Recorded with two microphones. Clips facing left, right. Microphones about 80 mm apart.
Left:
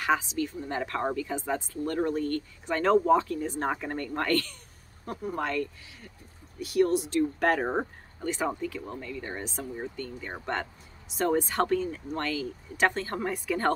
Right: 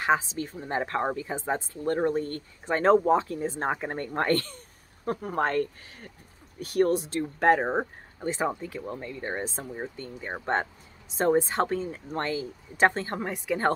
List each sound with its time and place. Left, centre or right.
0.0 s speech: right
5.0 s speech: right
13.2 s speech: centre